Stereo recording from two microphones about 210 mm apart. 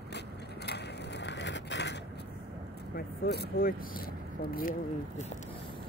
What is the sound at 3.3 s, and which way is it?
Speech, 50° left (ahead or behind).